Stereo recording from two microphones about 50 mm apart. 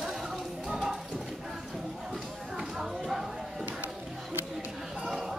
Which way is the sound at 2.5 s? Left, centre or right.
Centre.